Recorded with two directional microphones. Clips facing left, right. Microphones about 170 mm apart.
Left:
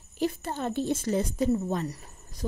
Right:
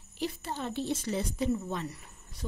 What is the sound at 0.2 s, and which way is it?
A woman's voice, 50° left (ahead or behind).